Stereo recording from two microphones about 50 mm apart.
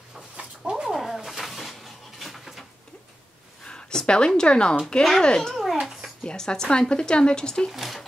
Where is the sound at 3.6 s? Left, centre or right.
Centre.